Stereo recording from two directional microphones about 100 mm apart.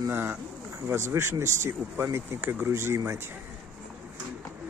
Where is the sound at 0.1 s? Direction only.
20° right (ahead or behind).